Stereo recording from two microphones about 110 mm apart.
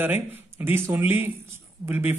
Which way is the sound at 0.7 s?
20° right (ahead or behind).